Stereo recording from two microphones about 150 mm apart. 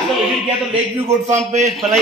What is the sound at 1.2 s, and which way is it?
Speech, 50° right (ahead or behind).